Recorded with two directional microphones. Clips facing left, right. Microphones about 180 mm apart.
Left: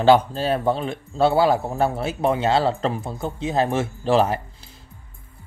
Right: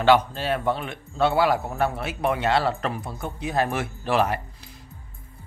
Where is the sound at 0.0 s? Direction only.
30° left (ahead or behind).